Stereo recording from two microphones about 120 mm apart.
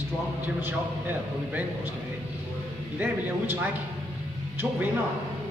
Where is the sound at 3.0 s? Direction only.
15° right (ahead or behind).